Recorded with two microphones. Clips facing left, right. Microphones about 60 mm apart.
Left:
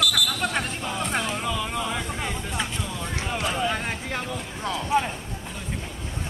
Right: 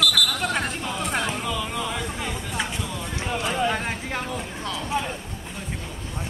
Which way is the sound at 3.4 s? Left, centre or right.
Centre.